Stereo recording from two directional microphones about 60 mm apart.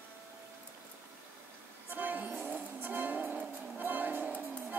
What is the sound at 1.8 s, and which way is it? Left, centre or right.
Music, right.